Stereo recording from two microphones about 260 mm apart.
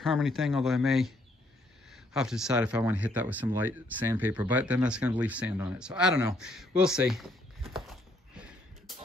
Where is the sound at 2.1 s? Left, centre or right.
Centre.